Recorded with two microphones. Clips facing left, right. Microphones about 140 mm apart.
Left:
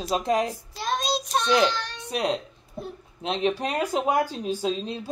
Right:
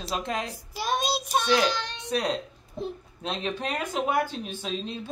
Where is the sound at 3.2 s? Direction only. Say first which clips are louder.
Left 5 dB; 25° left (ahead or behind).